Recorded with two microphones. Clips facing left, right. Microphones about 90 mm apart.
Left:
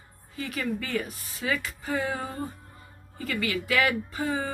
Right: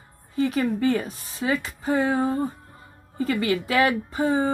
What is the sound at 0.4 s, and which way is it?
Speech, 30° right (ahead or behind).